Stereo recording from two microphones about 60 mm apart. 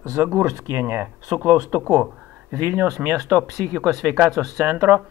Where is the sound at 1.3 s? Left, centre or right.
Right.